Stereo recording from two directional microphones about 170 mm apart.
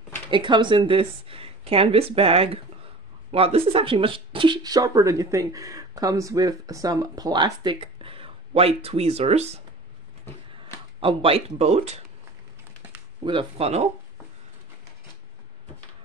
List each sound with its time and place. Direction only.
0.3 s a woman's voice: 30° right (ahead or behind)
11.0 s a woman's voice: 30° right (ahead or behind)
13.2 s a woman's voice: 30° right (ahead or behind)